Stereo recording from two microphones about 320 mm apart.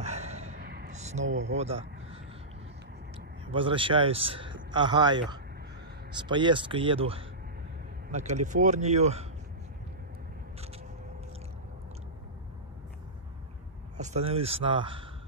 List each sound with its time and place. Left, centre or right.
0.0 s a sound: right
1.5 s speech: centre
3.5 s a man's voice: centre
13.9 s a man's voice: right